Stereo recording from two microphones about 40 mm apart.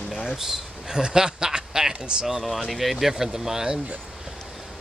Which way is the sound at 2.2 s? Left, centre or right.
Centre.